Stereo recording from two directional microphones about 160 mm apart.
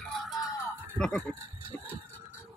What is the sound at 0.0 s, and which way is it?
Music, centre (ahead or behind).